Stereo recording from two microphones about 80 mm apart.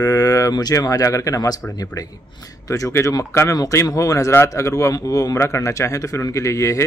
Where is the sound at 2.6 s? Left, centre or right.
Left.